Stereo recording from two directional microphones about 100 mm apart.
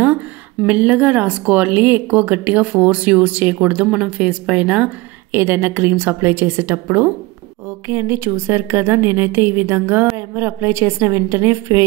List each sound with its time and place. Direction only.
0.7 s speech: 15° right (ahead or behind)
5.3 s a woman's voice: 25° right (ahead or behind)